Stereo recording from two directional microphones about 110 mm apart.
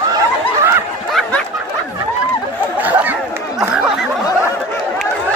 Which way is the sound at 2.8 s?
15° right (ahead or behind).